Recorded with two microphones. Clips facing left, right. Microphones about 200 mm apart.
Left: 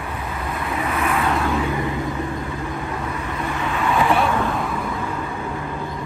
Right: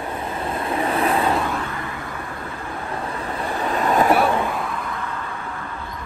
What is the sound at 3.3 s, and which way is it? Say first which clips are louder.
Vehicle: right 3 dB; 35° right (ahead or behind).